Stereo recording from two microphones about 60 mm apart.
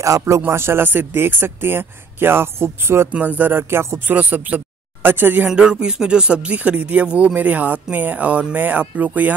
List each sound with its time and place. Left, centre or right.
0.5 s speech: right
3.1 s speech: right
4.1 s speech: right
5.5 s speech: centre; by 7.1 s right
7.1 s a sound: centre
7.3 s a sound: right
8.5 s speech: right